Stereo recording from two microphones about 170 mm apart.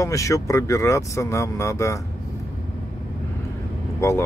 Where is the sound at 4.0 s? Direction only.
15° left (ahead or behind).